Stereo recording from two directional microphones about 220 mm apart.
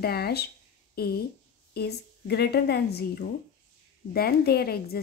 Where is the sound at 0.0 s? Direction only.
45° left (ahead or behind).